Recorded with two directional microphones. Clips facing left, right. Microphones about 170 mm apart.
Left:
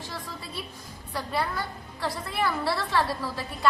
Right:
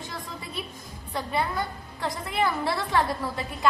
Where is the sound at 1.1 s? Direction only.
20° right (ahead or behind).